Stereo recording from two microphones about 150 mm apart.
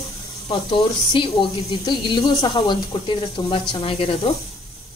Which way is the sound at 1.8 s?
30° left (ahead or behind).